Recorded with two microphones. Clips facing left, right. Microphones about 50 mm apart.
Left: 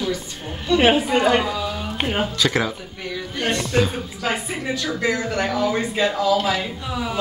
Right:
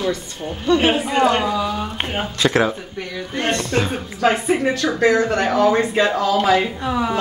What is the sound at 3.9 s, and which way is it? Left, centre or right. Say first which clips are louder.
Speech: right 6 dB; right.